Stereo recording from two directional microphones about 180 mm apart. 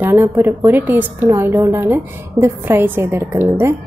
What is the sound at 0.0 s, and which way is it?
A woman's voice, 10° right (ahead or behind).